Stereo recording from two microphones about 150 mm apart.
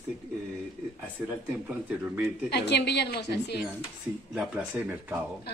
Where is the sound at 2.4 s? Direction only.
90° left.